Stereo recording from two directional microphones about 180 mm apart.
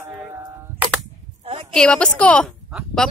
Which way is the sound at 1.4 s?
35° right (ahead or behind).